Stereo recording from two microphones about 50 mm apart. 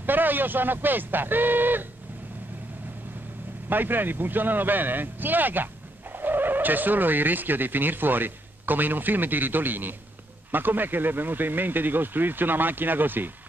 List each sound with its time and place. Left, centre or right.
0.0 s speech: right
3.6 s speech: right